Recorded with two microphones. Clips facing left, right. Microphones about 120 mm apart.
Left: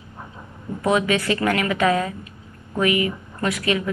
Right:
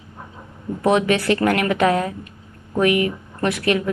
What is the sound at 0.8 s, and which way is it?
Speech, 60° right (ahead or behind).